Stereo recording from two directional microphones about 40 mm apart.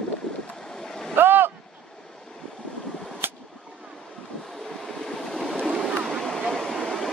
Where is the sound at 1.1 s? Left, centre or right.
Right.